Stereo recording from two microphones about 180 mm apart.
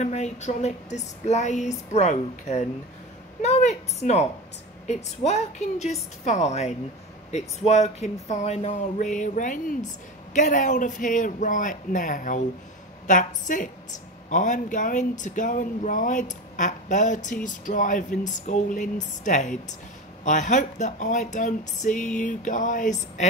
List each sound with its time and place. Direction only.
0.0 s speech: 40° left (ahead or behind)